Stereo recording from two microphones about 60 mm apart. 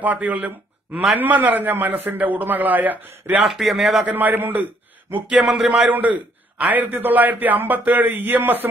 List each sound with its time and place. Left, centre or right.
0.0 s a man's voice: right
3.4 s a man's voice: centre
4.0 s a man's voice: right
5.2 s a man's voice: centre
5.9 s a man's voice: right